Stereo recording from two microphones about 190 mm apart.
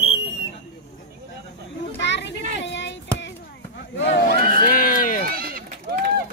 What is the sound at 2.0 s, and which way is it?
Children playing, 65° left (ahead or behind).